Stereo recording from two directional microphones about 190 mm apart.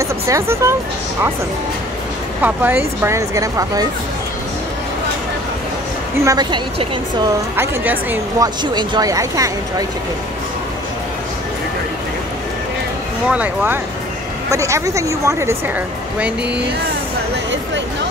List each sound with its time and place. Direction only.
0.0 s speech: 15° right (ahead or behind)
2.4 s speech: 10° right (ahead or behind)
6.2 s speech: 20° right (ahead or behind)
7.5 s speech: 10° right (ahead or behind)
8.7 s speech: 20° right (ahead or behind)
13.3 s speech: 10° right (ahead or behind)